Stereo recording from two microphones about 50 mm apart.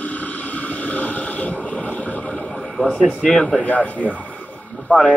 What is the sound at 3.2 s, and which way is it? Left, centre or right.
Speech, left.